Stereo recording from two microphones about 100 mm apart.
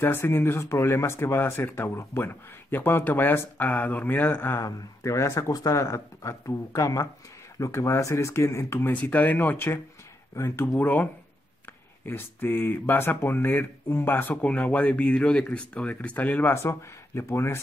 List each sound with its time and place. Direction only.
0.0 s speech: 25° left (ahead or behind)
4.6 s speech: 35° left (ahead or behind)
12.1 s speech: 20° left (ahead or behind)